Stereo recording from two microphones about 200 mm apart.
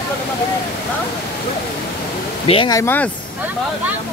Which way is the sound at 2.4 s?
25° left (ahead or behind).